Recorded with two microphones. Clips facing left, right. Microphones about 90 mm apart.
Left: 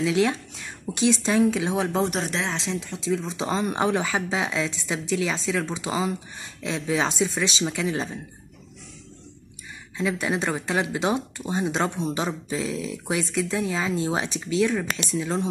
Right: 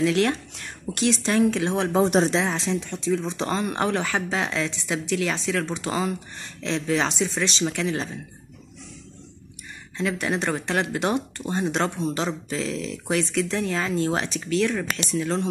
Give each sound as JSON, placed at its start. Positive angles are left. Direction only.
{"t": 0.0, "sound": "speech", "side_deg": 10}
{"t": 2.0, "sound": "speech", "side_deg": -30}
{"t": 2.6, "sound": "speech", "side_deg": 0}
{"t": 9.9, "sound": "speech", "side_deg": 10}